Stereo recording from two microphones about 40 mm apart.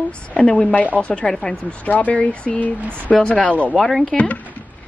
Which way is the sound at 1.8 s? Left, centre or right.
Left.